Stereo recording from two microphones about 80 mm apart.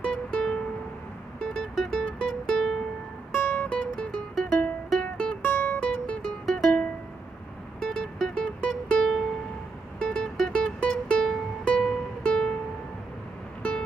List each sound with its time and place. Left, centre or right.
0.0 s music: centre
5.4 s music: left
5.8 s music: centre
7.8 s music: centre
13.6 s music: centre